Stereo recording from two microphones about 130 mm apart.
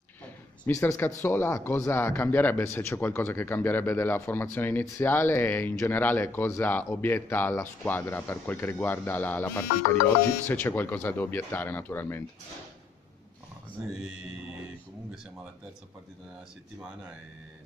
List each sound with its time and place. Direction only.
0.7 s speech: 25° left (ahead or behind)